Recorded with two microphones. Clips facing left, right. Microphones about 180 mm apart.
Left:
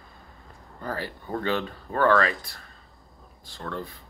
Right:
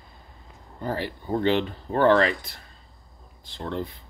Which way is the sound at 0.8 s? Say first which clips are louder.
Right 3 dB; 20° right (ahead or behind).